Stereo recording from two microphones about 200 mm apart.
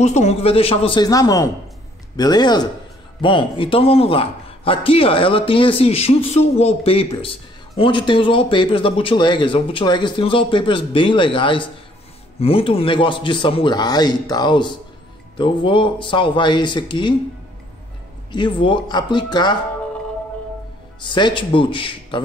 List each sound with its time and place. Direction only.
0.0 s a man's voice: 35° left (ahead or behind)
18.3 s a man's voice: 25° left (ahead or behind)
21.0 s a man's voice: 25° left (ahead or behind)